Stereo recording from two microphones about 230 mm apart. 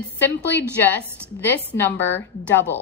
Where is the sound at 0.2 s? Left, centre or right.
Centre.